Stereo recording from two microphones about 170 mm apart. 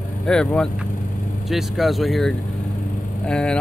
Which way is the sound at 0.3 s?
5° left (ahead or behind).